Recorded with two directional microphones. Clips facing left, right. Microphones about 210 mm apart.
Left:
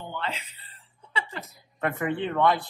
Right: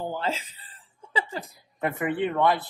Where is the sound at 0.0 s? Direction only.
35° right (ahead or behind).